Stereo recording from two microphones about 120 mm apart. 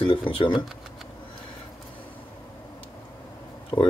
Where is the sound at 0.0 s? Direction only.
45° left (ahead or behind).